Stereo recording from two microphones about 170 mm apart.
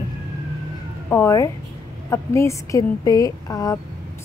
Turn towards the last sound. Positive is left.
turn(degrees=20)  # may be behind; listen again after turning